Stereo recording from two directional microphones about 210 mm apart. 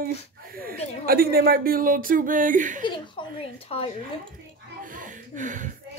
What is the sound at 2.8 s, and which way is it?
A woman's voice, 25° left (ahead or behind).